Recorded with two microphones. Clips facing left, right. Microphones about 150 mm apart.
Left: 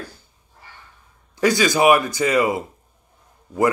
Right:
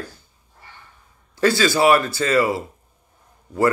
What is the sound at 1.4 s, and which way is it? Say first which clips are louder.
Speech: even; 15° left (ahead or behind).